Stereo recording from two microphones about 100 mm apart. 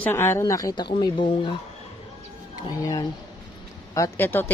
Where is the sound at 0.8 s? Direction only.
50° left (ahead or behind).